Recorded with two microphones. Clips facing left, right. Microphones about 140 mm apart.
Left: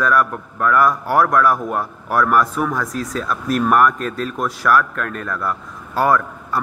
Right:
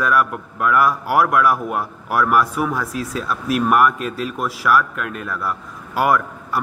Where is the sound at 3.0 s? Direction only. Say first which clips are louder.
Left 1 dB; 40° left (ahead or behind).